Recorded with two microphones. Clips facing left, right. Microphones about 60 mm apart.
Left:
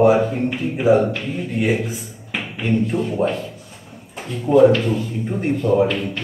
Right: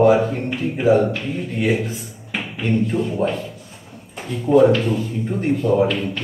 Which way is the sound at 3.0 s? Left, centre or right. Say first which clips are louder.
Left 1 dB; left.